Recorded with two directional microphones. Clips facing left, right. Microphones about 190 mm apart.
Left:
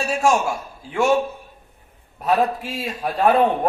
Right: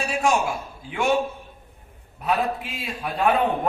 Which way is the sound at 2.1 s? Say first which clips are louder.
Left 4 dB; 40° left (ahead or behind).